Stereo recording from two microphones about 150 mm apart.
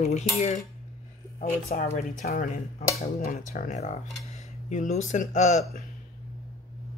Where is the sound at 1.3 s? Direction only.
70° left (ahead or behind).